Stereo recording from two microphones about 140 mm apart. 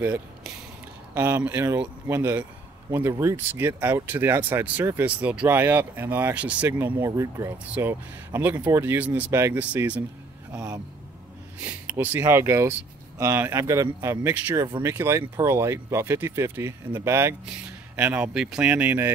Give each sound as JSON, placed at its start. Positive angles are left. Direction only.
{"t": 1.1, "sound": "speech", "side_deg": -15}
{"t": 7.0, "sound": "speech", "side_deg": -20}